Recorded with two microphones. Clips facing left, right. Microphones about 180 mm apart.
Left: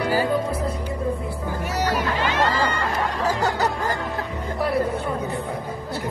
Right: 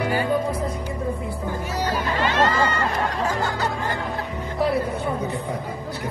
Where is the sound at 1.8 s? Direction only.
75° left (ahead or behind).